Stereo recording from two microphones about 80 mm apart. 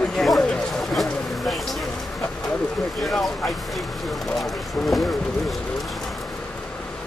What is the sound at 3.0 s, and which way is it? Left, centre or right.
Speech, centre.